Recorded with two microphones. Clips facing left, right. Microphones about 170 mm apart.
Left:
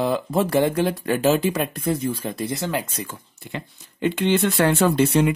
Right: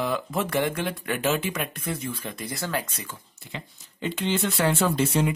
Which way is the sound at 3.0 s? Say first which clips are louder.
Left 4 dB; 55° left (ahead or behind).